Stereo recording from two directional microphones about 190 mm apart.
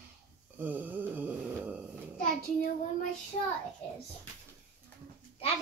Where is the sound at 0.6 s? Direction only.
10° right (ahead or behind).